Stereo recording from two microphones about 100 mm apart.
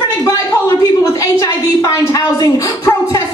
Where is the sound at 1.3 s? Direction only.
35° left (ahead or behind).